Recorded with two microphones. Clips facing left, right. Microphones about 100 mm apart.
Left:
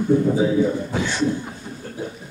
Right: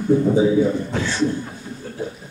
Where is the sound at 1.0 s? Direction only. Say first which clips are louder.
Even; 15° left (ahead or behind).